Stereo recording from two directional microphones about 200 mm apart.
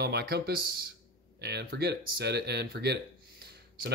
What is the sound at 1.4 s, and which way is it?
Speech, 55° right (ahead or behind).